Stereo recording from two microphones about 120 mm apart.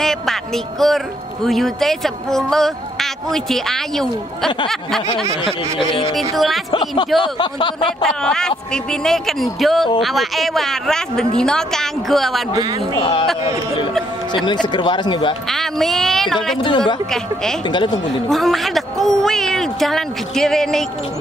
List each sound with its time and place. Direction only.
0.0 s speech: 5° left (ahead or behind)
5.4 s speech: 45° left (ahead or behind)
6.3 s speech: centre (ahead or behind)
6.7 s speech: 40° left (ahead or behind)
8.0 s speech: 5° left (ahead or behind)
12.9 s speech: 40° left (ahead or behind)
14.3 s speech: 40° left (ahead or behind)
15.4 s speech: centre (ahead or behind)
16.5 s speech: 40° left (ahead or behind)
17.1 s speech: 5° left (ahead or behind)
17.6 s speech: 35° left (ahead or behind)
18.3 s speech: centre (ahead or behind)